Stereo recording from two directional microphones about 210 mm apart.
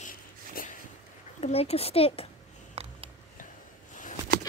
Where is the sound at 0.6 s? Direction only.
45° left (ahead or behind).